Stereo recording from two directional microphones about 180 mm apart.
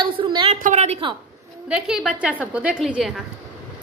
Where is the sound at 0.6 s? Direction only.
40° right (ahead or behind).